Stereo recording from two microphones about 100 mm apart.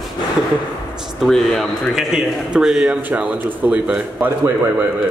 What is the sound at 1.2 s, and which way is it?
Speech, 5° left (ahead or behind).